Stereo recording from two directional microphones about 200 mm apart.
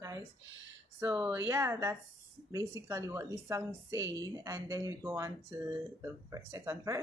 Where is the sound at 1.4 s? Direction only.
15° right (ahead or behind).